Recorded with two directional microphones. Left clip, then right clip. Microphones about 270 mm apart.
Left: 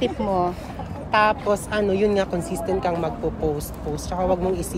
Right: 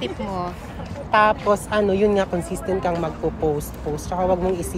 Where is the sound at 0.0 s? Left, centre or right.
Left.